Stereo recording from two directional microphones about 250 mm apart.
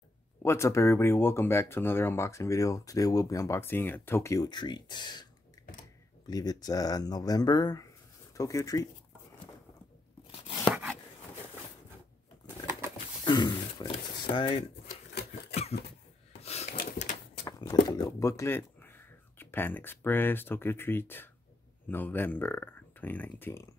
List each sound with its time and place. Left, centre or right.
0.4 s speech: centre
6.2 s speech: centre
10.3 s tearing: centre
10.7 s a sound: centre
13.2 s a sound: centre
14.3 s speech: centre
14.9 s a sound: left
15.7 s speech: left
16.4 s wood: left
17.5 s speech: centre